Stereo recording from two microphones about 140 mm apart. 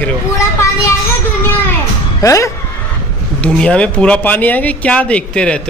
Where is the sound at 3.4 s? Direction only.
10° left (ahead or behind).